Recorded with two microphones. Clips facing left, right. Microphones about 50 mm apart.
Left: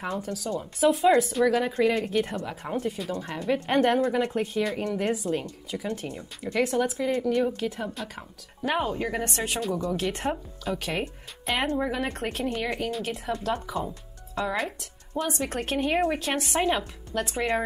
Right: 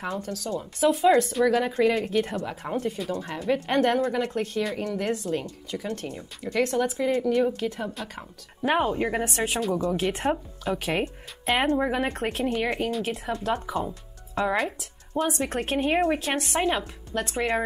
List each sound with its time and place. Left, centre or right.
0.0 s speech: centre
8.6 s speech: centre
9.2 s speech: centre
12.1 s speech: centre
14.3 s speech: centre
14.6 s speech: centre